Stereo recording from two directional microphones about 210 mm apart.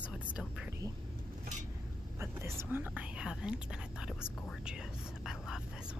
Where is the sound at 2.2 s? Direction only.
10° right (ahead or behind).